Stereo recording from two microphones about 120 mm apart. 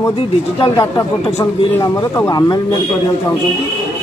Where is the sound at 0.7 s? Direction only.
30° left (ahead or behind).